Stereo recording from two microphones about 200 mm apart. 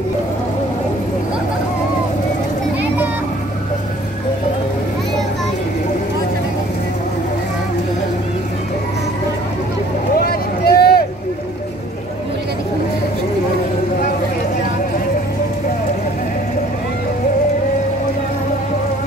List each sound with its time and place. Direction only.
10.1 s vehicle: 50° left (ahead or behind)